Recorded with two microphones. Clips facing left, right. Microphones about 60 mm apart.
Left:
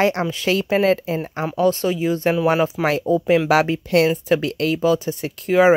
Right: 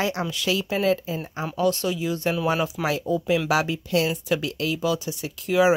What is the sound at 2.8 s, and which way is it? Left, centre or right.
Speech, left.